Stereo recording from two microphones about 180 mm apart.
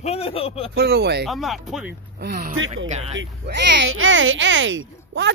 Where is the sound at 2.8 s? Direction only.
40° right (ahead or behind).